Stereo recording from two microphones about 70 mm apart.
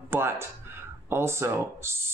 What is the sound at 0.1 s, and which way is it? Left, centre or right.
Speech, right.